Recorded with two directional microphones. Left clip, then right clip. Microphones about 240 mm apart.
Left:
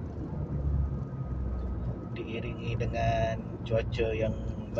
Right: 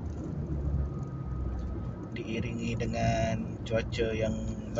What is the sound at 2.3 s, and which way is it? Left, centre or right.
Speech, centre.